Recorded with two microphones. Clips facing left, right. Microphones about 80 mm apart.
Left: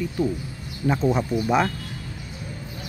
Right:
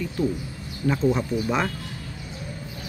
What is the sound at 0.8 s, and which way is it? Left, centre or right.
Speech, centre.